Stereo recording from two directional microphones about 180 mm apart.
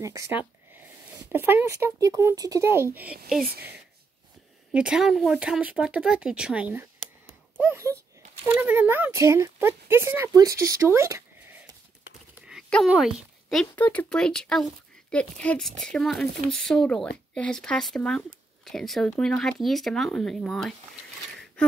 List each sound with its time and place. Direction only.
0.0 s speech: 15° right (ahead or behind)
3.4 s speech: 60° right (ahead or behind)
4.7 s speech: 5° right (ahead or behind)
12.4 s speech: centre (ahead or behind)